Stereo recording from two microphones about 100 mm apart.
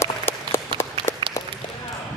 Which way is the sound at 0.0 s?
25° left (ahead or behind).